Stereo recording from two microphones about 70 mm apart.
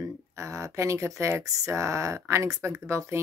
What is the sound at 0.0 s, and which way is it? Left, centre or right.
Speech, right.